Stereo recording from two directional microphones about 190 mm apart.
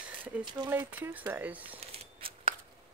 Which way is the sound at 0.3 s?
5° right (ahead or behind).